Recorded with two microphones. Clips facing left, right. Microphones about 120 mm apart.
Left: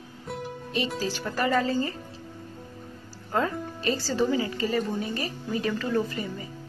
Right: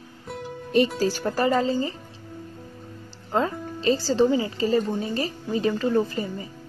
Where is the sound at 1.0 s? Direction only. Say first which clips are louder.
Right 5 dB; 45° right (ahead or behind); by 1.9 s 20° right (ahead or behind).